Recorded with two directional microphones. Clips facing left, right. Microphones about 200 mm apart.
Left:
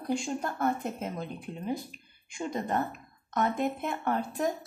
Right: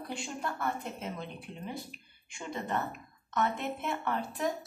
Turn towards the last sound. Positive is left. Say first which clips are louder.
# left 4 dB
turn(degrees=40)  # may be behind; listen again after turning